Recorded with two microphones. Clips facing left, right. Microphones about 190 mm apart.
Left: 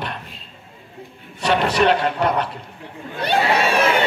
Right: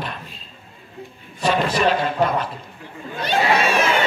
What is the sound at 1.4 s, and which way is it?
Speech, 70° left (ahead or behind).